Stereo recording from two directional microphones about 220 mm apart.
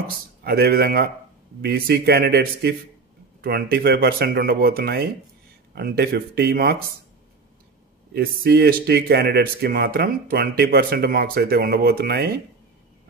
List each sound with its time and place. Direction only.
0.4 s speech: 45° right (ahead or behind)
8.1 s speech: 45° right (ahead or behind)